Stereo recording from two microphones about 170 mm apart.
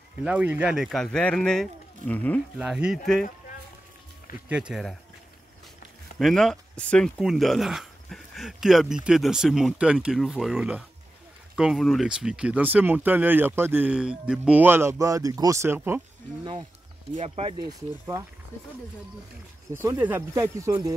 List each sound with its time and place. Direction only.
0.2 s speech: 10° right (ahead or behind); by 2.4 s 10° left (ahead or behind)
2.6 s speech: 5° right (ahead or behind)
4.5 s speech: 5° right (ahead or behind)
6.1 s speech: 5° left (ahead or behind); by 16.0 s 15° right (ahead or behind)
17.1 s speech: 40° right (ahead or behind)
17.6 s speech: 20° right (ahead or behind)
19.7 s speech: 15° right (ahead or behind)